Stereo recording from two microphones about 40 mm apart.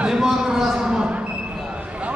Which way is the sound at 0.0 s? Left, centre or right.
Centre.